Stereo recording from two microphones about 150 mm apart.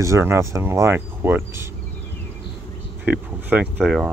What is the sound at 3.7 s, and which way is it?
Speech, centre (ahead or behind).